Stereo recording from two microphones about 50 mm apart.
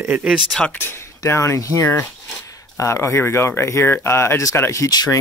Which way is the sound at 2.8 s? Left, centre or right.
Left.